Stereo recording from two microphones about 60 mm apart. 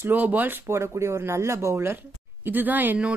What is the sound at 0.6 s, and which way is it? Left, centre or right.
Speech, right.